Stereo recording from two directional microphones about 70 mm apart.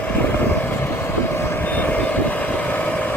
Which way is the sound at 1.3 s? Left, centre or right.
Left.